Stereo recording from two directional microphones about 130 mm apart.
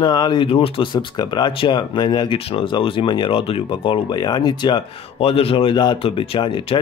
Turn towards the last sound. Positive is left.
turn(degrees=40)  # may be behind; listen again after turning